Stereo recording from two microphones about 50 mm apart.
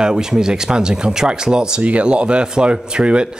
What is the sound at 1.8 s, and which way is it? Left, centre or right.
Speech, right.